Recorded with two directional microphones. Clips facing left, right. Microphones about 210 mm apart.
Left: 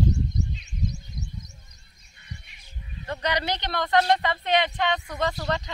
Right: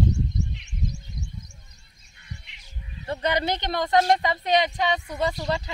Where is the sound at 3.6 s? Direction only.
20° right (ahead or behind).